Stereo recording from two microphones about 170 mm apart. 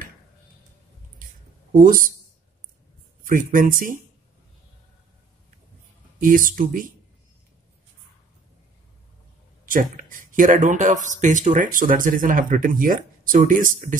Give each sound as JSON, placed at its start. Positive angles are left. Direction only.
{"t": 1.7, "sound": "speech", "side_deg": -55}
{"t": 3.3, "sound": "speech", "side_deg": -55}
{"t": 6.2, "sound": "speech", "side_deg": -55}
{"t": 9.7, "sound": "speech", "side_deg": -55}